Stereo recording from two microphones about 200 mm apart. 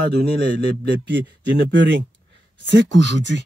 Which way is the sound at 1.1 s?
60° right (ahead or behind).